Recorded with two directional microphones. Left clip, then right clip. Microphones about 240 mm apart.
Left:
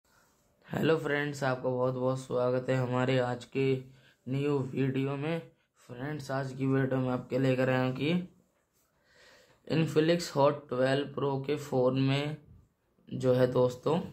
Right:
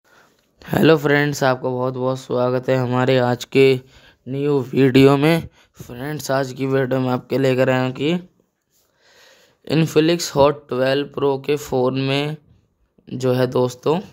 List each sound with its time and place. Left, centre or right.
0.6 s speech: right